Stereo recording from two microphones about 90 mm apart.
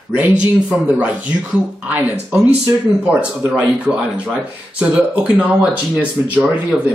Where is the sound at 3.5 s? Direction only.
10° right (ahead or behind).